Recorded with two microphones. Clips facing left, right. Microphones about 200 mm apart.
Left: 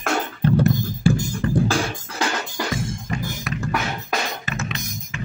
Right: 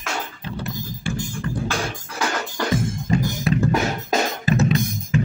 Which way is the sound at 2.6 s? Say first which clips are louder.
Right 3 dB; 10° left (ahead or behind).